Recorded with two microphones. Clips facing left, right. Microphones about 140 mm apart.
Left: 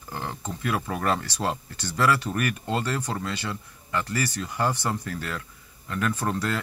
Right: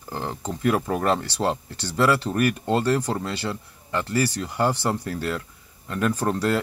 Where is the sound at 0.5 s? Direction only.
35° right (ahead or behind).